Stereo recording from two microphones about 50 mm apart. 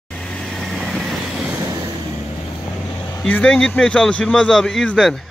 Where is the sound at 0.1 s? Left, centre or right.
Centre.